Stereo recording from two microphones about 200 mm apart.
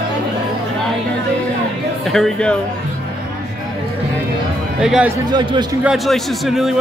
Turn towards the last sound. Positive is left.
turn(degrees=0)  # may be behind; listen again after turning